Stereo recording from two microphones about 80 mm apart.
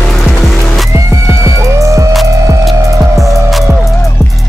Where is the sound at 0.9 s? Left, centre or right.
Right.